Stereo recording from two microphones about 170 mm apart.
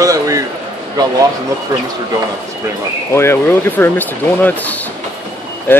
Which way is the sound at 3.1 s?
15° left (ahead or behind).